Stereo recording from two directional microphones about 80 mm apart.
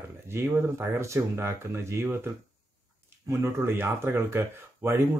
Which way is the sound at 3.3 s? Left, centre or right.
Right.